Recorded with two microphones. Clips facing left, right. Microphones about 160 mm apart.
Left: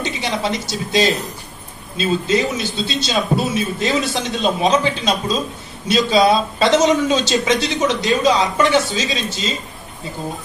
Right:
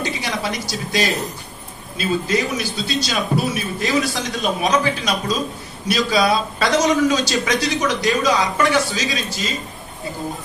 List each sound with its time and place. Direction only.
0.0 s a woman's voice: 25° left (ahead or behind)